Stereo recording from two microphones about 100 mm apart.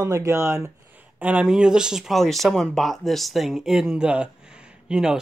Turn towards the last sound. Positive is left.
turn(degrees=-5)  # may be behind; listen again after turning